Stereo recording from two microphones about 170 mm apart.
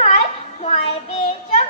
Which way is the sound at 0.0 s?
40° left (ahead or behind).